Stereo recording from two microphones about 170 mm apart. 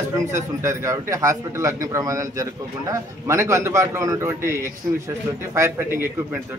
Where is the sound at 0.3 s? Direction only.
15° right (ahead or behind).